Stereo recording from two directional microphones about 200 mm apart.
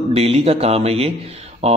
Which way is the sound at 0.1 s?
30° right (ahead or behind).